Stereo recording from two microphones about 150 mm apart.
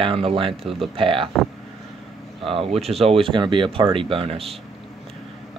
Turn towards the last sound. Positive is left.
turn(degrees=-40)  # may be behind; listen again after turning